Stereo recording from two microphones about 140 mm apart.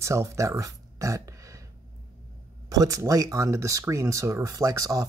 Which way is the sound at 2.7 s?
25° right (ahead or behind).